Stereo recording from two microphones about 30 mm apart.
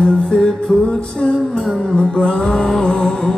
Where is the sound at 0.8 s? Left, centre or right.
Left.